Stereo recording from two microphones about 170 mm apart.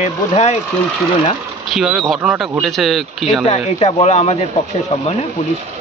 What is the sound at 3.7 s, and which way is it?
Speech, 40° left (ahead or behind).